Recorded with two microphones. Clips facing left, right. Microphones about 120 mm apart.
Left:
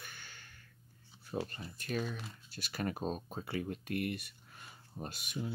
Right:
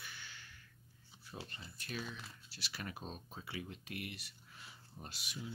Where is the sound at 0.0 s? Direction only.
50° left (ahead or behind).